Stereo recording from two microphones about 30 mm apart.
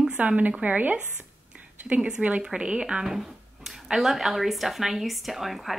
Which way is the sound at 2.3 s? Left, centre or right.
Right.